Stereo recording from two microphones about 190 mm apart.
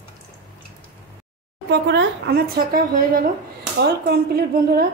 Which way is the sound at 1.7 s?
65° right (ahead or behind).